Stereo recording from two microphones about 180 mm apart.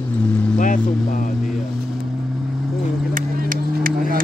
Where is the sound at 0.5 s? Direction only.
45° left (ahead or behind).